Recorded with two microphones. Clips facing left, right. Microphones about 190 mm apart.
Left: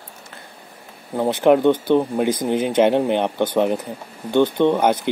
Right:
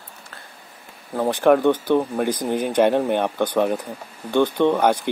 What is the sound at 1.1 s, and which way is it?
Speech, 15° left (ahead or behind).